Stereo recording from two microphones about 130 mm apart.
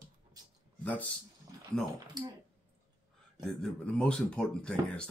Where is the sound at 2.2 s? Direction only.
35° right (ahead or behind).